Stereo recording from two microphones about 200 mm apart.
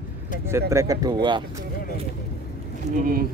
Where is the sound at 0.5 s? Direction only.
15° right (ahead or behind).